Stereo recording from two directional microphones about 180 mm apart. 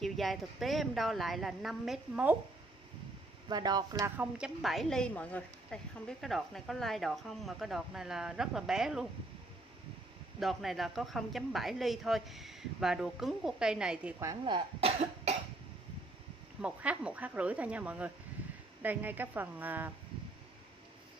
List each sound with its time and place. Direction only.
0.0 s a woman's voice: centre (ahead or behind)
3.4 s speech: 20° right (ahead or behind)
4.2 s a woman's voice: 5° right (ahead or behind)
10.4 s a woman's voice: centre (ahead or behind)
14.4 s cough: 30° right (ahead or behind)
16.6 s speech: 5° right (ahead or behind)